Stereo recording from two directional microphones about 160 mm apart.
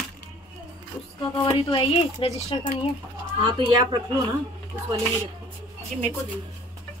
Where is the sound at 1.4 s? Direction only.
30° left (ahead or behind).